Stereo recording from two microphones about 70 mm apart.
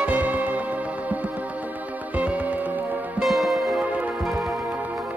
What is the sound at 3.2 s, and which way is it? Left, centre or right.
Music, centre.